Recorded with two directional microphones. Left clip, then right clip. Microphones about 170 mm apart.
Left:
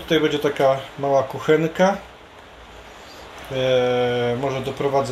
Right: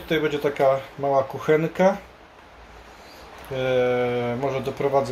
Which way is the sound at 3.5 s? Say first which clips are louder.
Left 3 dB; 20° right (ahead or behind).